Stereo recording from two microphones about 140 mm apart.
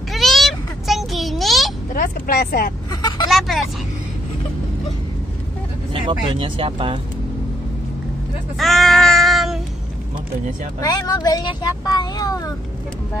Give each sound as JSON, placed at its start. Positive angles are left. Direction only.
{"t": 0.1, "sound": "a sound", "side_deg": 0}
{"t": 2.0, "sound": "speech", "side_deg": 90}
{"t": 2.9, "sound": "vehicle", "side_deg": 30}
{"t": 3.3, "sound": "vehicle", "side_deg": 0}
{"t": 5.9, "sound": "speech", "side_deg": -35}
{"t": 8.5, "sound": "child singing", "side_deg": 0}
{"t": 10.8, "sound": "speech", "side_deg": 25}